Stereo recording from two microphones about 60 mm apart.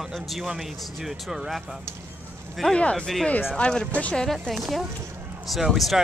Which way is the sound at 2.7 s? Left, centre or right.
Centre.